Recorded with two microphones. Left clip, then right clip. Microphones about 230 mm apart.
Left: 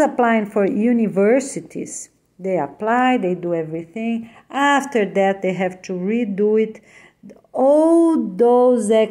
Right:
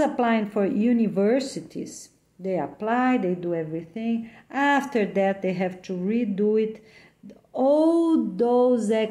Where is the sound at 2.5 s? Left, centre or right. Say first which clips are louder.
Left 6 dB; left.